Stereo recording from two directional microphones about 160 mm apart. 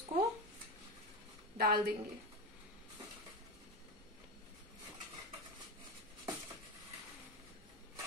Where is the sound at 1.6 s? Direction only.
75° right (ahead or behind).